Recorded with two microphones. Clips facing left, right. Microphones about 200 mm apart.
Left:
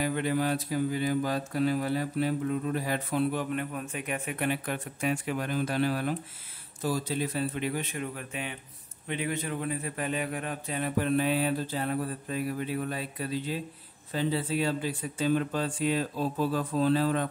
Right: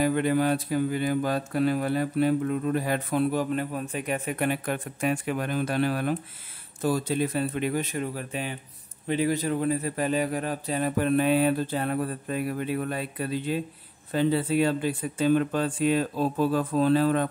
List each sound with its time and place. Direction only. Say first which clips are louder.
0.0 s mantra: right 5 dB; 50° right (ahead or behind)
6.8 s a man's voice: right 5 dB; 55° right (ahead or behind); by 11.1 s 40° right (ahead or behind)
11.1 s mantra: right 5 dB; 55° right (ahead or behind)